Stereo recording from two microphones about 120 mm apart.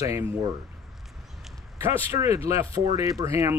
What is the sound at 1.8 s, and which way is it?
Speech, 25° right (ahead or behind).